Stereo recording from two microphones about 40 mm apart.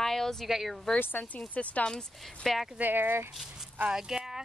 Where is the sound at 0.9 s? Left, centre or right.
Left.